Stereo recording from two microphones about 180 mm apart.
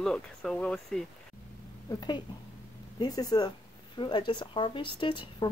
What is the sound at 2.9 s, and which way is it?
Speech, 20° left (ahead or behind).